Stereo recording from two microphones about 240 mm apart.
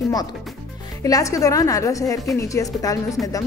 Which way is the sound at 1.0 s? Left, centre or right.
Centre.